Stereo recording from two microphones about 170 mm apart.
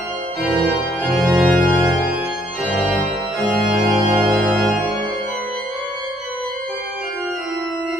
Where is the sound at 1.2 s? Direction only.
10° right (ahead or behind).